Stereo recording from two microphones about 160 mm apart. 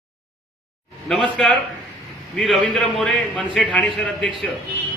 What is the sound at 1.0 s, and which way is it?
A man's voice, 5° left (ahead or behind).